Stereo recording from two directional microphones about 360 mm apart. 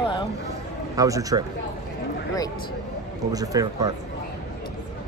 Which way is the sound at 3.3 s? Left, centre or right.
Centre.